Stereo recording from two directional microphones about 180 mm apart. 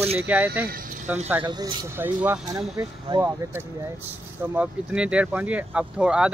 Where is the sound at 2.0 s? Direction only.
10° right (ahead or behind).